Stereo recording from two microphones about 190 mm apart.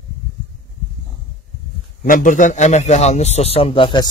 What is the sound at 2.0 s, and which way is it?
A man's voice, 45° left (ahead or behind).